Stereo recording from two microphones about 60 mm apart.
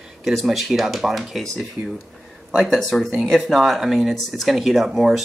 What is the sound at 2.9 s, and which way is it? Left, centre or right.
Speech, centre.